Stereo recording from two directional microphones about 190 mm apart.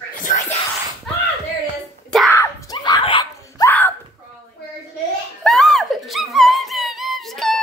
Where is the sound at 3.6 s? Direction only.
10° left (ahead or behind).